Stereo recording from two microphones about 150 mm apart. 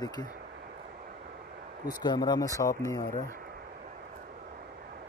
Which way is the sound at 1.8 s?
30° left (ahead or behind).